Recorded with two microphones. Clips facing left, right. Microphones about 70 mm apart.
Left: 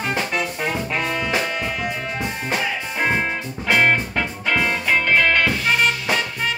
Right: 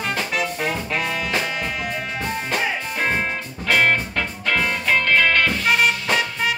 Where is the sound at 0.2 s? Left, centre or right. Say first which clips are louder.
Even; centre.